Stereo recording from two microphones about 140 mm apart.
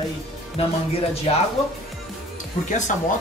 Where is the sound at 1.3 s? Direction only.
45° left (ahead or behind).